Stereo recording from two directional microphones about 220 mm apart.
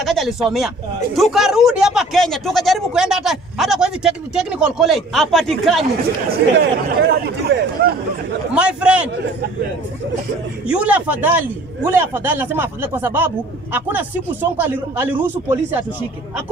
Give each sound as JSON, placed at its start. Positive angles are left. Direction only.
{"t": 0.0, "sound": "speech", "side_deg": 0}
{"t": 6.6, "sound": "speech", "side_deg": -50}
{"t": 8.5, "sound": "speech", "side_deg": -5}
{"t": 10.7, "sound": "a man's voice", "side_deg": -5}